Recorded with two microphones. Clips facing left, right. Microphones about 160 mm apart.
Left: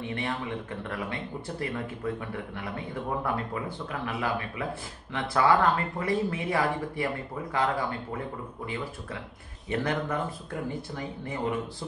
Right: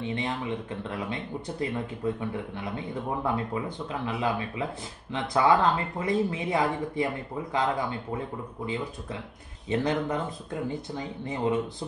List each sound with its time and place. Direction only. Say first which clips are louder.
0.0 s speech: right 2 dB; 20° right (ahead or behind)
9.7 s speech: right 2 dB; 20° right (ahead or behind)